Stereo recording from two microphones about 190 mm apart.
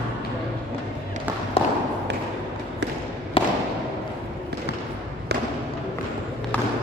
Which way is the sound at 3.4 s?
30° left (ahead or behind).